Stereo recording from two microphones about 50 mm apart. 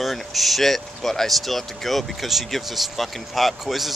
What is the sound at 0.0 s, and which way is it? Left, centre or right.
Speech, centre.